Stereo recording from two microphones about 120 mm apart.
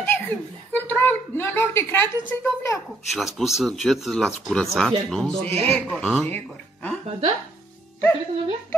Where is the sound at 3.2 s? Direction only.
Centre (ahead or behind).